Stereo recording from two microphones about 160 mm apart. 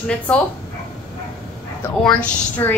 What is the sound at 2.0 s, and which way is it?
Speech, 10° left (ahead or behind).